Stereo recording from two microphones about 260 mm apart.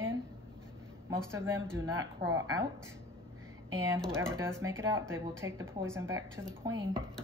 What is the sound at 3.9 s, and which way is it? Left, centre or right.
A woman's voice, centre.